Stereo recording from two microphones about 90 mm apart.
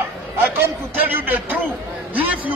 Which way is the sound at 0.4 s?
20° right (ahead or behind).